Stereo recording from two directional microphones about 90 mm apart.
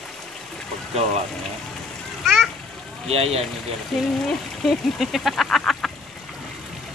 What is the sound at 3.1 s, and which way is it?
Speech, 90° right.